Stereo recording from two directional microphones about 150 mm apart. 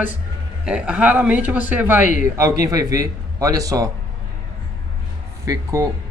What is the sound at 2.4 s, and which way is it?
Speech, 20° right (ahead or behind).